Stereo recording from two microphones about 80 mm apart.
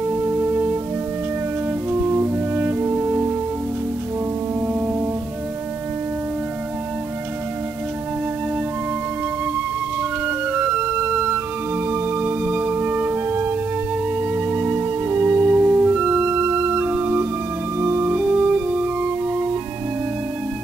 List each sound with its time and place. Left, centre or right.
0.1 s music: right
1.9 s brass instrument: right
4.6 s music: right
10.2 s music: centre
18.1 s music: centre